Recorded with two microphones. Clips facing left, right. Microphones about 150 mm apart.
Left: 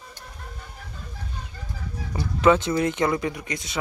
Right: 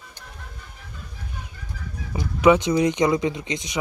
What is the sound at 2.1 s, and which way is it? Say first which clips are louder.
Speech: right 2 dB; 15° right (ahead or behind).